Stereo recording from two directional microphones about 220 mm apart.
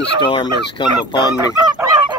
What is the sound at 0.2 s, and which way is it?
Fowl, 20° left (ahead or behind).